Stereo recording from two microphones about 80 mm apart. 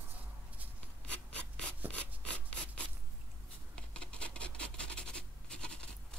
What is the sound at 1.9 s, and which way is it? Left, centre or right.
Rub, centre.